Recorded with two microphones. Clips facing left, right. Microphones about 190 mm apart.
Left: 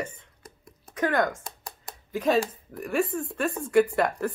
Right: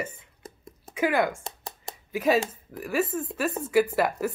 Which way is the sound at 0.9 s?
10° right (ahead or behind).